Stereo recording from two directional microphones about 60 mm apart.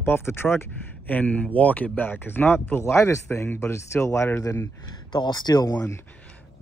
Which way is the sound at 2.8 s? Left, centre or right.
Left.